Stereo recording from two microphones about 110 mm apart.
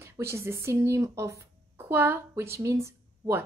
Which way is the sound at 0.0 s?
25° right (ahead or behind).